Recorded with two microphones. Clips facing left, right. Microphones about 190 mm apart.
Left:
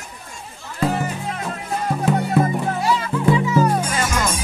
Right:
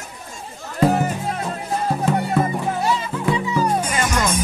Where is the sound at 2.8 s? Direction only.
20° right (ahead or behind).